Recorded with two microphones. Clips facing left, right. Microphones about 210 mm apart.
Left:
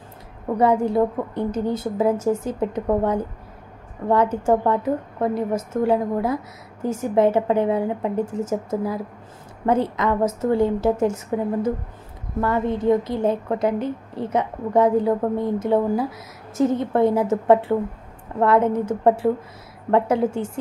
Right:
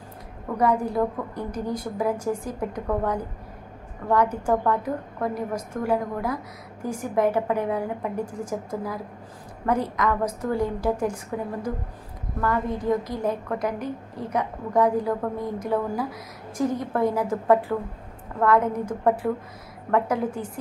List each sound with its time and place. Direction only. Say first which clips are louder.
0.6 s a woman's voice: left 4 dB; 25° left (ahead or behind)
12.4 s a woman's voice: left 4 dB; 25° left (ahead or behind)